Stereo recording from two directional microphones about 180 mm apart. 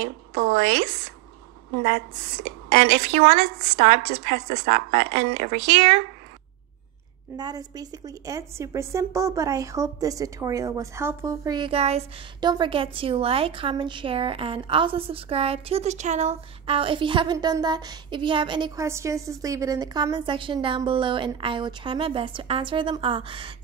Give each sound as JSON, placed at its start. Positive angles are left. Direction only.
{"t": 0.3, "sound": "a woman's voice", "side_deg": -60}
{"t": 2.7, "sound": "speech", "side_deg": -40}
{"t": 7.3, "sound": "a woman's voice", "side_deg": -20}
{"t": 12.4, "sound": "a woman's voice", "side_deg": -25}